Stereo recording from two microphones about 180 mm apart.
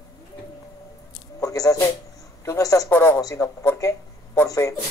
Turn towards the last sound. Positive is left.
turn(degrees=15)  # may be behind; listen again after turning